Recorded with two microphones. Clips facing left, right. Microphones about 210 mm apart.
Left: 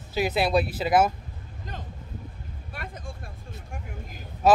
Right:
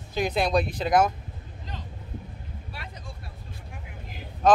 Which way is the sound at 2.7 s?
50° left (ahead or behind).